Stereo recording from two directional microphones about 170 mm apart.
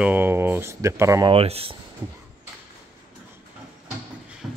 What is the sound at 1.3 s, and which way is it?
Speech, 35° right (ahead or behind).